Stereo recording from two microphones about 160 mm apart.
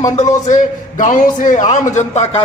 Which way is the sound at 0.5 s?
50° left (ahead or behind).